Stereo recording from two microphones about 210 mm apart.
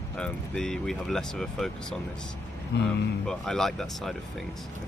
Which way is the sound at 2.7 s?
55° left (ahead or behind).